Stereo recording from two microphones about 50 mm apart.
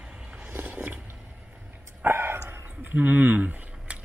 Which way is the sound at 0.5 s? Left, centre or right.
Right.